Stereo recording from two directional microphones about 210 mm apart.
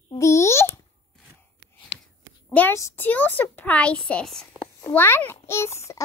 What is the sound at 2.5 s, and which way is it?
A woman's voice, 10° left (ahead or behind).